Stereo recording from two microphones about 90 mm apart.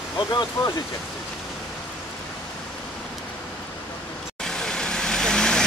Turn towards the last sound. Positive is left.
turn(degrees=5)  # may be behind; listen again after turning